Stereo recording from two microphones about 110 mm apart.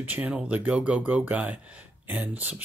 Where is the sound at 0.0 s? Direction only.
15° right (ahead or behind).